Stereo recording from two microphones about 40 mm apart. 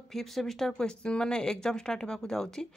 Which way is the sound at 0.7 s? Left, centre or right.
Left.